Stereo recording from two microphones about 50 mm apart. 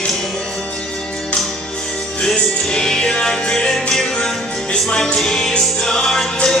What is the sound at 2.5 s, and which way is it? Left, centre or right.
Music, centre.